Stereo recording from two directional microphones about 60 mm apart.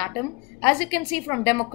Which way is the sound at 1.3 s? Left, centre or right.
Left.